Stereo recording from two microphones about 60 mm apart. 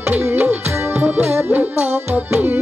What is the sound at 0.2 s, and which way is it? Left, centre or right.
Music, right.